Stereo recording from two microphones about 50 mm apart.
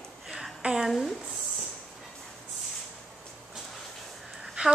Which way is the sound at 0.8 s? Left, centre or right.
Centre.